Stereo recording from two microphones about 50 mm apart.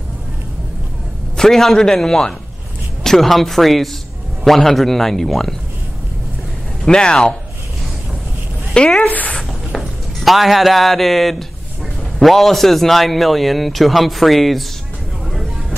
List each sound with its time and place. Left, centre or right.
1.3 s a man's voice: centre
6.9 s a man's voice: centre
8.7 s speech: centre
9.1 s speech: left
9.8 s speech: centre